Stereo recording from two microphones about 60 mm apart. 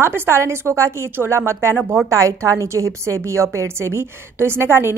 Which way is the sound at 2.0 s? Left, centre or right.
Right.